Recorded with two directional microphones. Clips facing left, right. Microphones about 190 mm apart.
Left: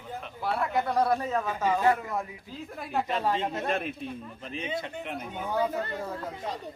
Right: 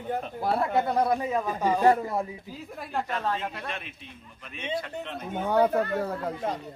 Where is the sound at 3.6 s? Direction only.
45° left (ahead or behind).